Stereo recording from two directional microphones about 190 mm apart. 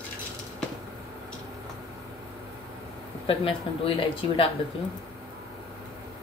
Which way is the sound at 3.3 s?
30° left (ahead or behind).